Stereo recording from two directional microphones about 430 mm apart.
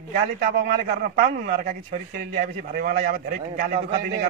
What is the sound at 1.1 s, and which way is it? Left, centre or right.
A man's voice, centre.